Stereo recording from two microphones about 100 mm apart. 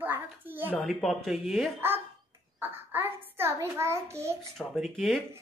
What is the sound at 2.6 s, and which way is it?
A child's voice, 20° right (ahead or behind).